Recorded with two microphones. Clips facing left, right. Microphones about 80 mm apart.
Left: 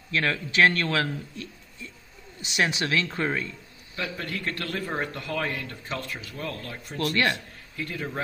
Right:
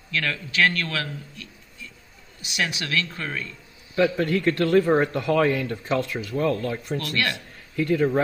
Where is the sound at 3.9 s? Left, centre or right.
Right.